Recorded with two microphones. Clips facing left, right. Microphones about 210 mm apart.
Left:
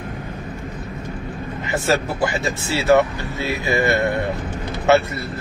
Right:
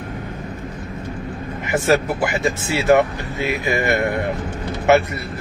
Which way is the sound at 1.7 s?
20° right (ahead or behind).